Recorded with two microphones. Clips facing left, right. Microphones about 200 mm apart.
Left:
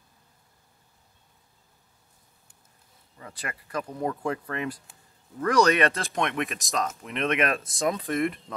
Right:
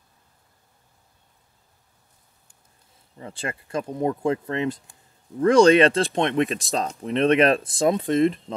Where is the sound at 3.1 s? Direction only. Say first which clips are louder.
Right 6 dB; 30° right (ahead or behind).